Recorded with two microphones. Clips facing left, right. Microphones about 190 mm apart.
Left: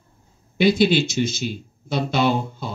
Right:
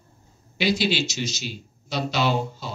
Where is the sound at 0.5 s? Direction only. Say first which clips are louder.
Left 7 dB; 55° left (ahead or behind).